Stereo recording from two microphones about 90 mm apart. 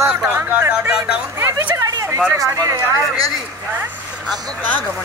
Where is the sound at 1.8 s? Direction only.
40° right (ahead or behind).